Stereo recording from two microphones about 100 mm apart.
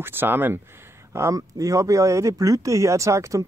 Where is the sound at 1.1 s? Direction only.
30° right (ahead or behind).